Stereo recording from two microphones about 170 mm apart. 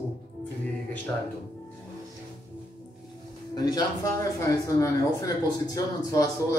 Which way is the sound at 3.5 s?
25° left (ahead or behind).